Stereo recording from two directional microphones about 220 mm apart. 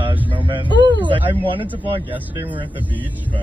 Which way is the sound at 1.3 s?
25° right (ahead or behind).